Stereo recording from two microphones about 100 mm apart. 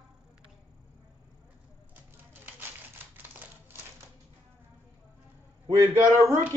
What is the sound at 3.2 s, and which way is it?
Typewriter, 20° right (ahead or behind).